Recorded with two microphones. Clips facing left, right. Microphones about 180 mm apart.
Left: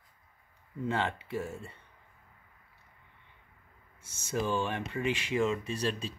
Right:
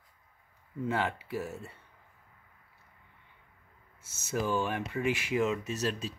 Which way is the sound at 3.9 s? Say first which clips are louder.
Even; 5° right (ahead or behind).